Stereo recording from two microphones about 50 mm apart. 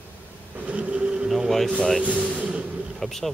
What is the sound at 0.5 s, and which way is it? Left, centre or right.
Printer, right.